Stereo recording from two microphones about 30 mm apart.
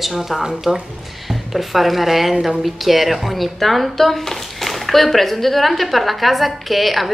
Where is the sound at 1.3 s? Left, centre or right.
Centre.